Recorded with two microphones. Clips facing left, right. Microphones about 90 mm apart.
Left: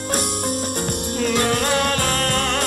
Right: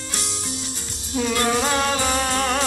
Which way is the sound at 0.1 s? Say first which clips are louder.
Left 10 dB; 50° left (ahead or behind).